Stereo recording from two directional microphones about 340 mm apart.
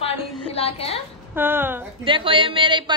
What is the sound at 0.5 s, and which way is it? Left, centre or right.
Speech, centre.